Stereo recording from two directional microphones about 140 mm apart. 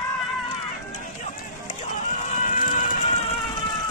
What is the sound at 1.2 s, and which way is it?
Run, 60° left (ahead or behind).